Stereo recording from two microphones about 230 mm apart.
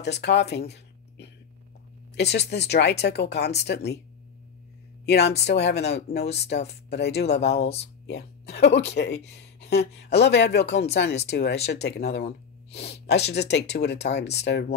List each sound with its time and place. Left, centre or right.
0.0 s speech: left
5.0 s speech: left